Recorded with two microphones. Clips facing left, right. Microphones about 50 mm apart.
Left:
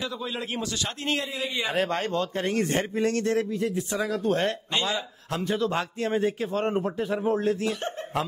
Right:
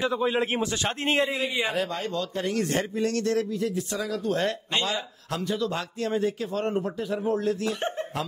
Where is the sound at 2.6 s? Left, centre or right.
Left.